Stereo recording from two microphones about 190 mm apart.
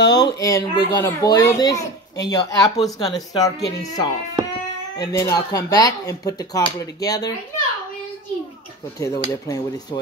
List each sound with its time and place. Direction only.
0.0 s a child's voice: 20° left (ahead or behind)
9.0 s cutlery: 15° left (ahead or behind)